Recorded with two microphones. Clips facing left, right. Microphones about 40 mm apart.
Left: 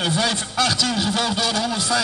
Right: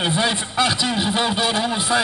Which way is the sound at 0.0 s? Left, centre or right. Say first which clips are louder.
Right 1 dB; right.